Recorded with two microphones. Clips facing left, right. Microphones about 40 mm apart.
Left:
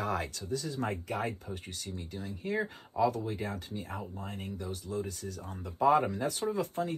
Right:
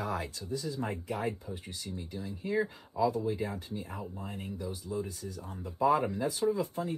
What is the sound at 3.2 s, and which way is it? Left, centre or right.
Speech, left.